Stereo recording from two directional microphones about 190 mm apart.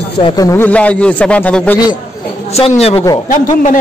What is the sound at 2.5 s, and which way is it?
Speech, 30° left (ahead or behind).